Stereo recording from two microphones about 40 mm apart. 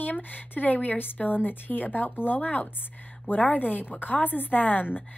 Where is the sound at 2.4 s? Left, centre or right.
Left.